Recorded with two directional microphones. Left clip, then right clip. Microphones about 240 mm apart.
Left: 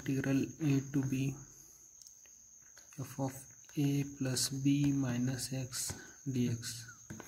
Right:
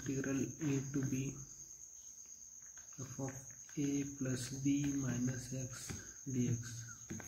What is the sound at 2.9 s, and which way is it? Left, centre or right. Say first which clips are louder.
Speech: left 6 dB; left.